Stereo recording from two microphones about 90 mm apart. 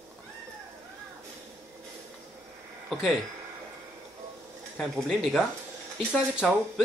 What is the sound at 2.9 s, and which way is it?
Speech, 5° right (ahead or behind).